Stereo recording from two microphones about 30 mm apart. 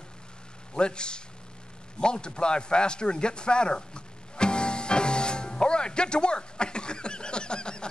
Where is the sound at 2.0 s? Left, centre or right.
Left.